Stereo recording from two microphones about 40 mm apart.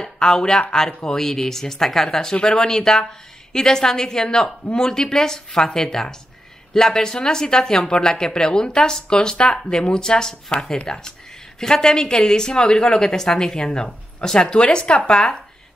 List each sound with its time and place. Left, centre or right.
0.0 s speech: centre